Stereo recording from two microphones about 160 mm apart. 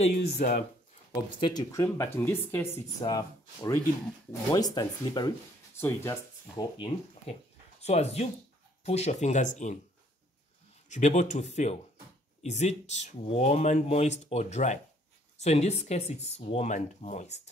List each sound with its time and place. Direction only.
1.1 s speech: 25° left (ahead or behind)
3.0 s speech: 25° left (ahead or behind)
5.8 s speech: 15° left (ahead or behind)
6.5 s speech: 35° left (ahead or behind); by 9.8 s 50° left (ahead or behind)
10.9 s speech: 45° left (ahead or behind)